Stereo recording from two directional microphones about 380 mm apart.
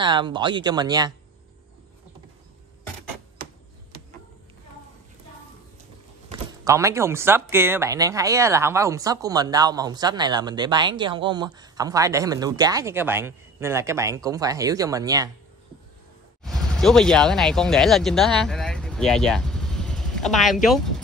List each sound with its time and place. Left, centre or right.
0.0 s speech: centre
3.9 s a sound: right
6.2 s speech: centre
16.4 s speech: centre